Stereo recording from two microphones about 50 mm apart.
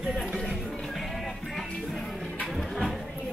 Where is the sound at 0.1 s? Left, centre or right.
Centre.